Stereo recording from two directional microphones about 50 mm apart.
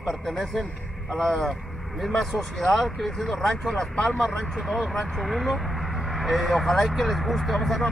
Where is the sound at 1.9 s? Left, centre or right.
Centre.